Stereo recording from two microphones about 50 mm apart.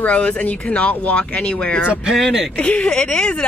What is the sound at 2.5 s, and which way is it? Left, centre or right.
Speech, left.